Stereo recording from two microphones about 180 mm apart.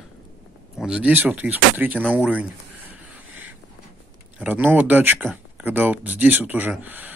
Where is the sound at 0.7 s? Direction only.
5° right (ahead or behind).